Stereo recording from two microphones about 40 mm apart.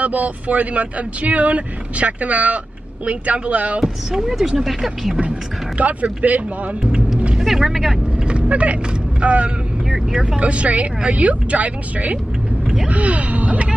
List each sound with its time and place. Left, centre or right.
0.0 s speech: right
4.1 s speech: centre
5.8 s speech: right
7.3 s speech: centre
8.2 s vehicle: right
9.2 s speech: right
12.8 s a sound: right